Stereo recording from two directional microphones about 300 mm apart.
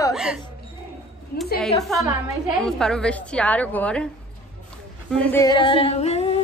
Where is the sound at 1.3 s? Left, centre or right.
Left.